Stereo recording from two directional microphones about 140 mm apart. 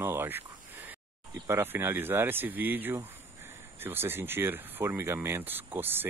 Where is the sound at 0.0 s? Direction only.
15° right (ahead or behind).